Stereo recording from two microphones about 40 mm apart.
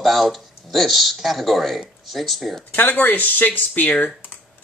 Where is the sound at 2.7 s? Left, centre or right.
Left.